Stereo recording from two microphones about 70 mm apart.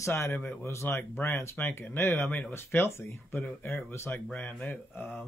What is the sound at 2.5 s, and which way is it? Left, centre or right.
Speech, left.